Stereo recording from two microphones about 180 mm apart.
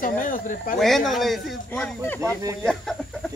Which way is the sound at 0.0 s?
50° left (ahead or behind).